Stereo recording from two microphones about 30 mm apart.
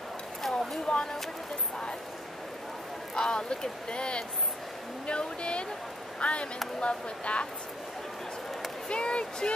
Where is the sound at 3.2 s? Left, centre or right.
Left.